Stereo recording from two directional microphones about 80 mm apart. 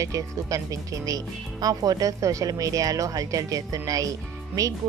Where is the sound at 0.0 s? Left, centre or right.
Right.